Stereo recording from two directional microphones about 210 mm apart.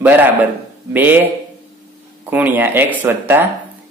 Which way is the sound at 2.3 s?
10° right (ahead or behind).